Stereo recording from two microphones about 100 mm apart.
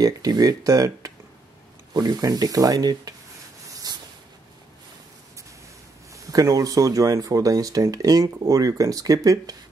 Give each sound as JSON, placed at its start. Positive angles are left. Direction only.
{"t": 0.0, "sound": "speech", "side_deg": -40}
{"t": 3.9, "sound": "a sound", "side_deg": -45}
{"t": 6.3, "sound": "speech", "side_deg": -35}